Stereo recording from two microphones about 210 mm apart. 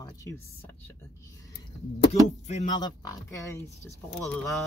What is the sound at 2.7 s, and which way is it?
Speech, 20° left (ahead or behind).